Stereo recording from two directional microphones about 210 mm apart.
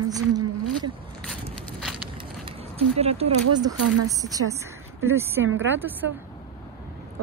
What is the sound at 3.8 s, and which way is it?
Speech, 90° right.